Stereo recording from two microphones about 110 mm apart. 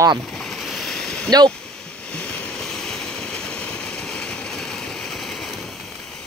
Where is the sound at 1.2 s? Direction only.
35° right (ahead or behind).